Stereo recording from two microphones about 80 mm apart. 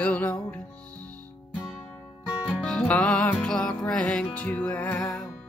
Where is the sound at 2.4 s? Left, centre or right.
Centre.